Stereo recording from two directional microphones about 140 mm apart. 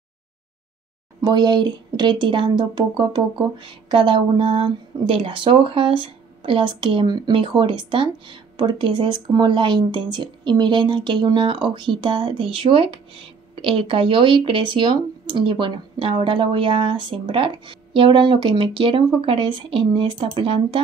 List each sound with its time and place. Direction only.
1.2 s speech: 30° right (ahead or behind)